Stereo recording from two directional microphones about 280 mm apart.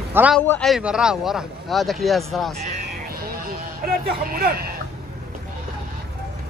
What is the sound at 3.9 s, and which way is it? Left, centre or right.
Speech, right.